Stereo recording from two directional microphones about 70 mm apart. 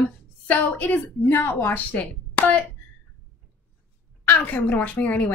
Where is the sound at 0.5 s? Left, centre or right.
Left.